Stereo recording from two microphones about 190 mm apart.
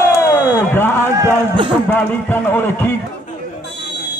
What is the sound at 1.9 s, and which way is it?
Speech, 10° left (ahead or behind).